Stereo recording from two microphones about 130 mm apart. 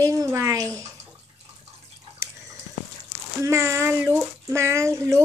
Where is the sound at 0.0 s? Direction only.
25° right (ahead or behind).